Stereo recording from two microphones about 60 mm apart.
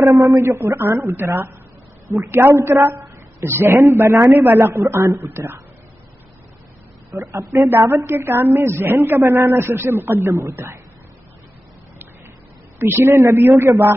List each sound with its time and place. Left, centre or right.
0.1 s a woman's voice: right
0.7 s a woman's voice: right
2.0 s a woman's voice: right
5.0 s speech: right
7.2 s a woman's voice: right
12.7 s a woman's voice: right
13.1 s a woman's voice: right
13.4 s a woman's voice: right